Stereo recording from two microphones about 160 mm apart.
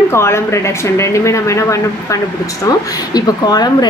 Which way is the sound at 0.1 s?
15° left (ahead or behind).